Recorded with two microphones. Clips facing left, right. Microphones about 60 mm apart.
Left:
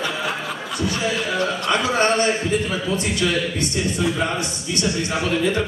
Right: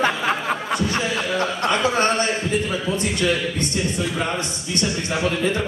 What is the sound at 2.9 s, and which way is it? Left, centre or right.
A man's voice, right.